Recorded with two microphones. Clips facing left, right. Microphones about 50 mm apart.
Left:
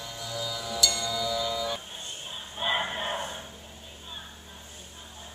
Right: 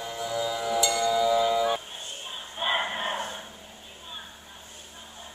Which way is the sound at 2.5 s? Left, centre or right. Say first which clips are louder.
Right 1 dB; centre.